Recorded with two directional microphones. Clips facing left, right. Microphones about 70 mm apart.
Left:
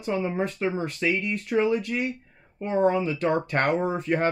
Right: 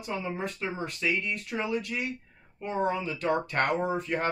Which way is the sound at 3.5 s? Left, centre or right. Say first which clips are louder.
Left 3 dB; left.